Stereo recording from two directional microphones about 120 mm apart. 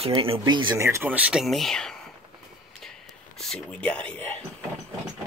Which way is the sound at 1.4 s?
Centre (ahead or behind).